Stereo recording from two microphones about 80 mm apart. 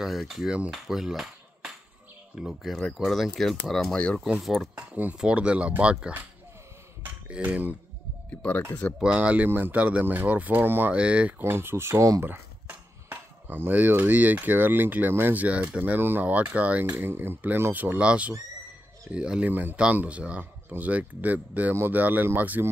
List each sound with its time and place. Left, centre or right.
0.0 s speech: centre
4.3 s speech: centre
4.7 s speech: centre
7.2 s speech: centre
8.3 s speech: centre
9.0 s speech: centre
11.0 s speech: centre